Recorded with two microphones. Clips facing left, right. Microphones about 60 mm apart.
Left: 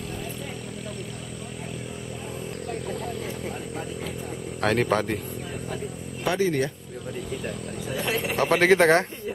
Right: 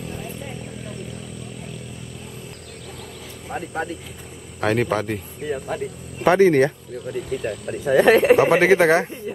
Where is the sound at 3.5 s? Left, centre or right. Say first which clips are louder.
Right 6 dB; right.